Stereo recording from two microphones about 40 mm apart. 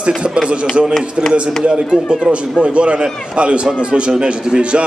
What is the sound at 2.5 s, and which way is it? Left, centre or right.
A man's voice, right.